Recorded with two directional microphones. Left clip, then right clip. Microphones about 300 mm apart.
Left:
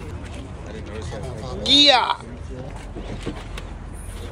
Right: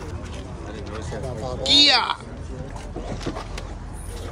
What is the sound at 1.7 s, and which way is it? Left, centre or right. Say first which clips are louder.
Speech: left 2 dB; centre.